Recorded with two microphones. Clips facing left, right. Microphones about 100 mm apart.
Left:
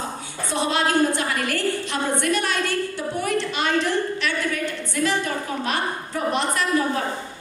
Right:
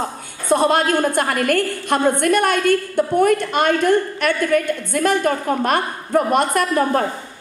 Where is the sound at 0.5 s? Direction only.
50° right (ahead or behind).